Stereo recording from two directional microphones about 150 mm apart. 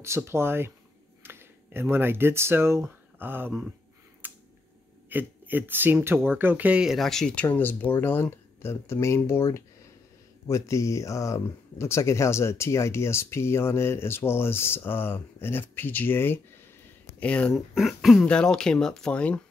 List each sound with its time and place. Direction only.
0.0 s speech: 15° right (ahead or behind)
4.2 s a sound: 10° right (ahead or behind)
5.1 s speech: 15° right (ahead or behind); by 19.4 s 5° left (ahead or behind)